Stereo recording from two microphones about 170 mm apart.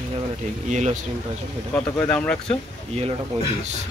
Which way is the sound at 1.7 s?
10° left (ahead or behind).